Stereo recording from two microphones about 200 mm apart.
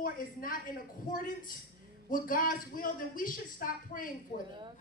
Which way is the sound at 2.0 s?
45° left (ahead or behind).